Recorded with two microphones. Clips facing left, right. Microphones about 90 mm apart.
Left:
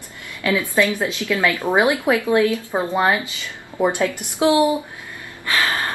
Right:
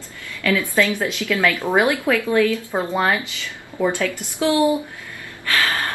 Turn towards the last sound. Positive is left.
turn(degrees=20)  # may be behind; listen again after turning